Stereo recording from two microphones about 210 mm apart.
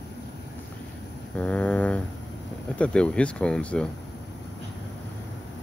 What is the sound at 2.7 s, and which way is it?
Speech, 5° left (ahead or behind).